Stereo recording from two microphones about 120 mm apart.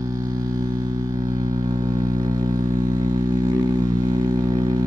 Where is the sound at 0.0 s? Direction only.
30° right (ahead or behind).